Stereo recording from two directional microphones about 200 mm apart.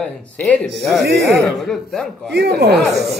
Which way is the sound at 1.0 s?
55° right (ahead or behind).